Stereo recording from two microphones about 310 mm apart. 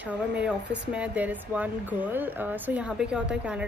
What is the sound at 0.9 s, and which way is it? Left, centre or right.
A woman's voice, centre.